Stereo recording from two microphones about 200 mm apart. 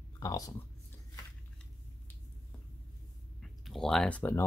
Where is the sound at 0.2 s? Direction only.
15° left (ahead or behind).